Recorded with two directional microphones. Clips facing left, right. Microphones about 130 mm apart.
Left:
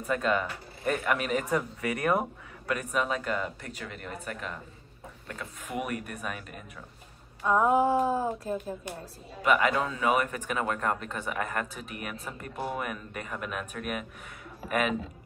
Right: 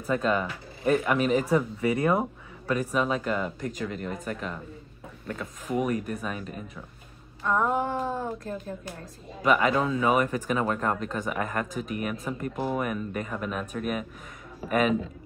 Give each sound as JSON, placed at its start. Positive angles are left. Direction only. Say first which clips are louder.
{"t": 0.0, "sound": "speech", "louder": "right 2 dB", "side_deg": -30}
{"t": 7.4, "sound": "a sound", "louder": "left 3 dB", "side_deg": 10}
{"t": 9.4, "sound": "speech", "louder": "right 2 dB", "side_deg": -35}